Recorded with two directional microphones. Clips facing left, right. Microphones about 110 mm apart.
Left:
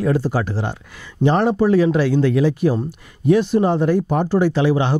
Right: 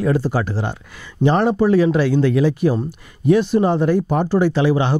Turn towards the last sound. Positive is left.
turn(degrees=-15)  # may be behind; listen again after turning